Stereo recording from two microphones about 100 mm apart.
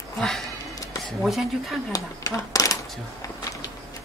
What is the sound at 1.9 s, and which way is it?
Speech, 35° left (ahead or behind).